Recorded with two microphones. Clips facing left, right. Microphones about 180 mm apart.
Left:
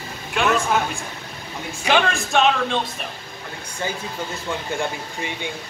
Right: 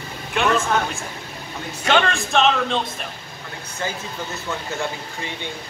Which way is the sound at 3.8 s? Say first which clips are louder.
Even; 15° left (ahead or behind).